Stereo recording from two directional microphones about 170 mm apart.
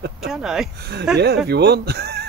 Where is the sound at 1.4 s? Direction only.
70° right (ahead or behind).